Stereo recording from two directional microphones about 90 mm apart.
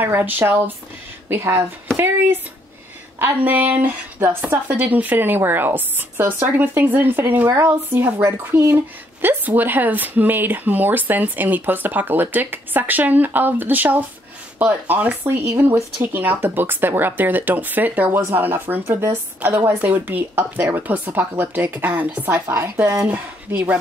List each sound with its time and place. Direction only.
0.0 s a woman's voice: 20° right (ahead or behind)
22.3 s speech: 35° right (ahead or behind)
23.0 s speech: 20° right (ahead or behind)